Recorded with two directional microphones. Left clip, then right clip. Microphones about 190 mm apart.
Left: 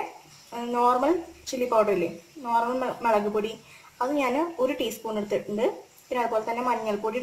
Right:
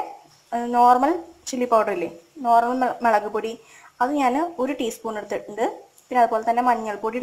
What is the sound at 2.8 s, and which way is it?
A woman's voice, 30° right (ahead or behind).